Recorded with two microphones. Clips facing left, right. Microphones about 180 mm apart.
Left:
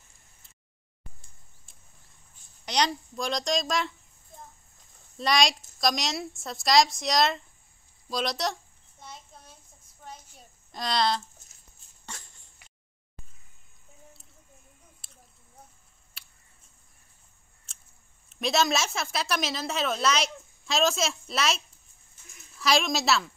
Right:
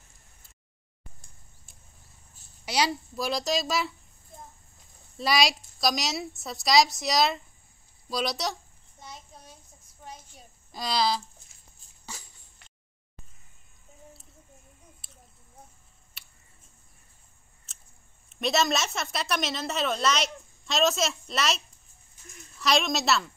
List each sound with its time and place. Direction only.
2.6 s a woman's voice: 5° right (ahead or behind)
5.1 s a woman's voice: 5° right (ahead or behind)
10.7 s speech: centre (ahead or behind)
12.1 s throat clearing: centre (ahead or behind)
16.2 s a sound: centre (ahead or behind)
18.3 s a woman's voice: centre (ahead or behind)